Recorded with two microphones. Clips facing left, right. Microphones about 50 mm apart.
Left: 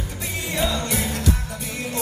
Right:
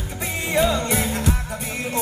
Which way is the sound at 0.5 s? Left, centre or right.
Right.